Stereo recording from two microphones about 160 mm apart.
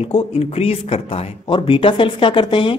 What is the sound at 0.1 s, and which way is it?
Speech, 40° left (ahead or behind).